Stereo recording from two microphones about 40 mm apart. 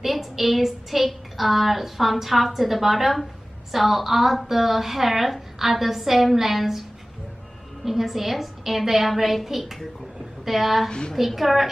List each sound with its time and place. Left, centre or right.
0.0 s a woman's voice: centre
7.8 s a woman's voice: centre
10.9 s a woman's voice: left
11.1 s a woman's voice: centre